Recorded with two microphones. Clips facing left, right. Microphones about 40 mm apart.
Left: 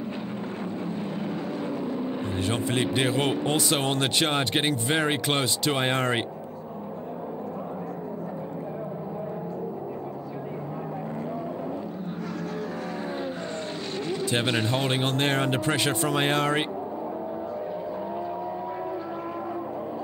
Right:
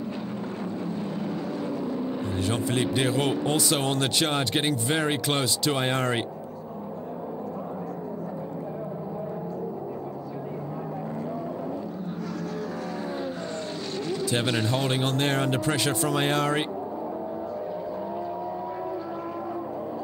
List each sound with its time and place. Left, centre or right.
2.4 s speech: left
14.2 s speech: left